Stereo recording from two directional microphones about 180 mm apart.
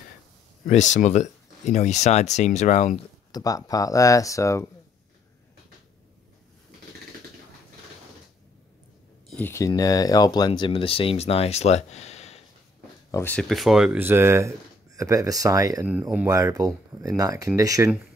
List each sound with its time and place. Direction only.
0.7 s speech: 40° left (ahead or behind)
3.3 s speech: 20° left (ahead or behind)
9.3 s speech: 10° left (ahead or behind); by 12.4 s 35° left (ahead or behind)
13.1 s speech: 10° left (ahead or behind); by 15.9 s 20° right (ahead or behind)
15.9 s speech: 10° right (ahead or behind)
16.3 s speech: 20° right (ahead or behind)